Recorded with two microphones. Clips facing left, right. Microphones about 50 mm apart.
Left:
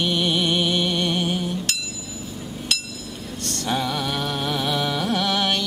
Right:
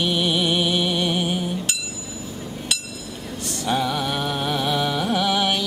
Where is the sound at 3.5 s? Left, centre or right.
Centre.